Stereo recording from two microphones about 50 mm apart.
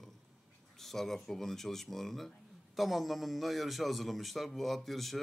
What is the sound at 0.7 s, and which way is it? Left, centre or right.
A man's voice, centre.